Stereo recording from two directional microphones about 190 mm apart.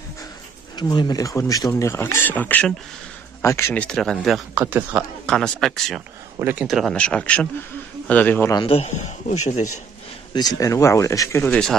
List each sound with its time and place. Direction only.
0.7 s speech: 20° left (ahead or behind); by 5.0 s 10° right (ahead or behind)
5.2 s speech: 5° left (ahead or behind)
8.6 s a man's voice: 35° left (ahead or behind)
10.3 s speech: 20° left (ahead or behind)